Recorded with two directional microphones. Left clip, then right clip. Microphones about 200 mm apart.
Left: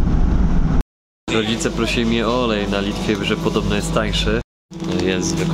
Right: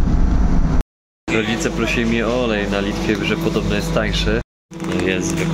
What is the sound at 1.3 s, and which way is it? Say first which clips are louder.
Speech: right 1 dB; 10° left (ahead or behind).